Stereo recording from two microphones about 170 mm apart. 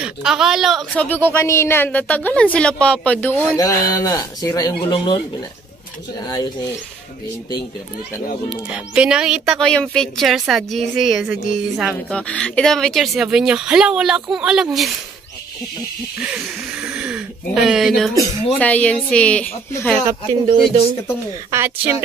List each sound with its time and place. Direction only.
0.0 s a woman's voice: 5° right (ahead or behind); by 5.2 s 30° left (ahead or behind)
6.2 s speech: 20° left (ahead or behind)
8.5 s speech: 5° right (ahead or behind)
16.2 s a woman's voice: 10° right (ahead or behind); by 20.0 s 10° left (ahead or behind)
21.5 s speech: 15° right (ahead or behind)